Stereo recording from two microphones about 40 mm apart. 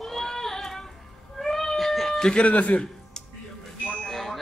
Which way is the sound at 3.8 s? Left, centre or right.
Left.